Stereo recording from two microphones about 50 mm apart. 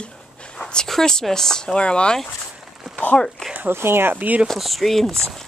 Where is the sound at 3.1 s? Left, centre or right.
Centre.